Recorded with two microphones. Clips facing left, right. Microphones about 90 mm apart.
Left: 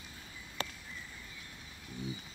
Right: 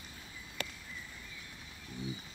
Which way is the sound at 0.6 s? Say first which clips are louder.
Left 2 dB; 30° left (ahead or behind).